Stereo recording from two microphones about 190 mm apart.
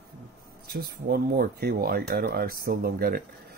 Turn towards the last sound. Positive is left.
turn(degrees=-55)  # may be behind; listen again after turning